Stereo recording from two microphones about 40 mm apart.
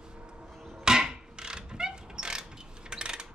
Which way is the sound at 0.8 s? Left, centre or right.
Centre.